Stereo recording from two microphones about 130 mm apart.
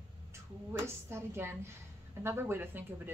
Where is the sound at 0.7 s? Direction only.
20° right (ahead or behind).